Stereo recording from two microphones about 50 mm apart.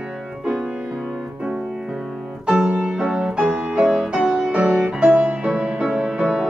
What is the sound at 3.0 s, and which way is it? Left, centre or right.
Music, centre.